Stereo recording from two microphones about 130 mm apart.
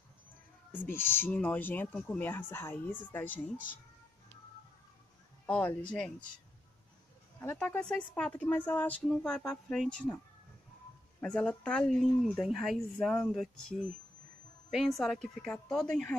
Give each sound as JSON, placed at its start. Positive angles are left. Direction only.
{"t": 0.7, "sound": "speech", "side_deg": 15}
{"t": 5.5, "sound": "speech", "side_deg": 10}
{"t": 7.5, "sound": "a woman's voice", "side_deg": 10}